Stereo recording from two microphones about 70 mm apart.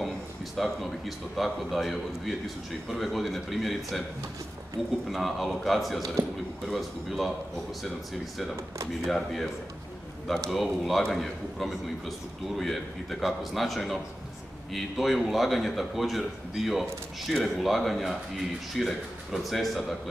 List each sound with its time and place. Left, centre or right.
0.6 s a man's voice: centre
5.0 s a man's voice: centre
9.0 s a man's voice: centre